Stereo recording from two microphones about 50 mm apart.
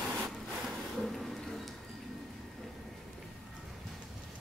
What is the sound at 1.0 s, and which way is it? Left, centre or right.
Music, centre.